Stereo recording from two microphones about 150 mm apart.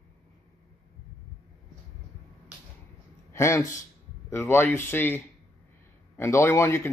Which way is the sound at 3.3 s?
20° left (ahead or behind).